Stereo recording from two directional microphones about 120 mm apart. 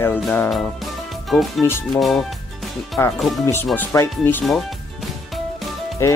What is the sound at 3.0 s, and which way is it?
Speech, 20° left (ahead or behind).